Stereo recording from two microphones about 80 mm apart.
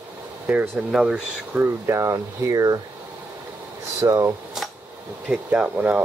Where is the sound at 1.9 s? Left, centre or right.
Right.